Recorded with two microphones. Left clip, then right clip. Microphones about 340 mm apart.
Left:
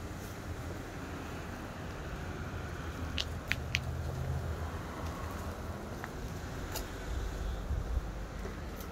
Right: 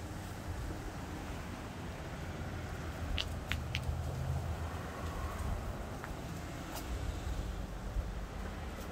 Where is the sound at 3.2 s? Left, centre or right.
Left.